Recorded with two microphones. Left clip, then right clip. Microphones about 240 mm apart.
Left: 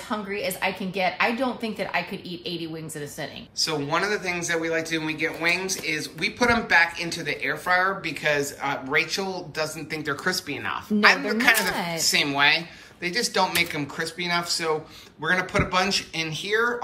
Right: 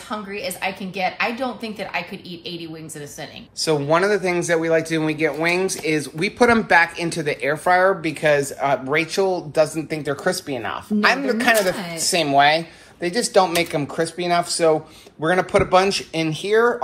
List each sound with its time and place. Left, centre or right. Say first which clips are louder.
0.1 s a woman's voice: right 1 dB; centre
3.5 s a man's voice: right 7 dB; centre